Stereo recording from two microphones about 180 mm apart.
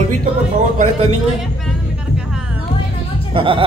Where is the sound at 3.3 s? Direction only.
30° right (ahead or behind).